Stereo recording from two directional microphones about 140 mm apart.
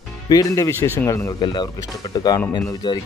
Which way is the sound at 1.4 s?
35° left (ahead or behind).